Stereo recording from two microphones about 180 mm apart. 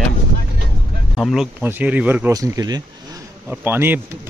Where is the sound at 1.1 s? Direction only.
Centre (ahead or behind).